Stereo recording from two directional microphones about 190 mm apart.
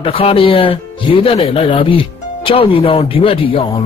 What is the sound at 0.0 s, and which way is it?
Speech, 30° left (ahead or behind).